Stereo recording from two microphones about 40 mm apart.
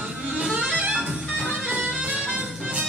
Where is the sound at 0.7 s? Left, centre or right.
Right.